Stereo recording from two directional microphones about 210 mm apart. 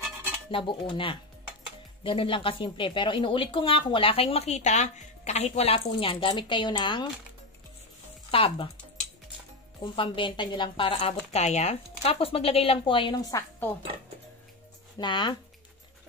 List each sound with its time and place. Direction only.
0.5 s speech: 25° left (ahead or behind)
8.3 s speech: 25° left (ahead or behind)
9.9 s speech: 25° left (ahead or behind)
15.0 s speech: 20° left (ahead or behind)